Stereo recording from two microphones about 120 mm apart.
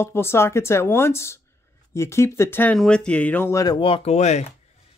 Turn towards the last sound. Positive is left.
turn(degrees=65)  # may be behind; listen again after turning